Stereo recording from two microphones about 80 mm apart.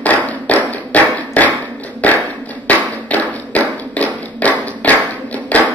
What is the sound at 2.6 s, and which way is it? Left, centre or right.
Tap, centre.